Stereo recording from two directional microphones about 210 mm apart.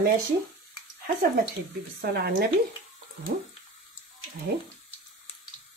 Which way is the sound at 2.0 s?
50° right (ahead or behind).